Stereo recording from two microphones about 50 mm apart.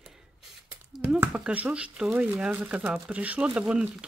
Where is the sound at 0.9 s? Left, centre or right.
Centre.